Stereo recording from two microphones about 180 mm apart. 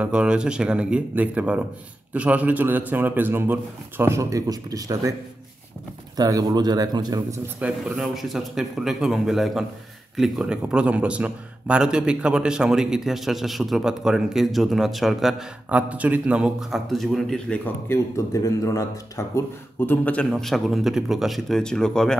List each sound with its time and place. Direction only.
0.0 s a man's voice: 5° right (ahead or behind)
6.1 s speech: 20° right (ahead or behind)
7.9 s a man's voice: centre (ahead or behind)
17.8 s a man's voice: 15° left (ahead or behind)